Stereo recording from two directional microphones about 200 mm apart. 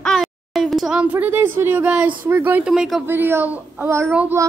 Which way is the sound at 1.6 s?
10° right (ahead or behind).